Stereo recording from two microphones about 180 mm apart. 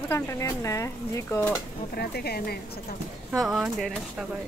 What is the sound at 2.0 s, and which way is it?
Speech, 60° left (ahead or behind).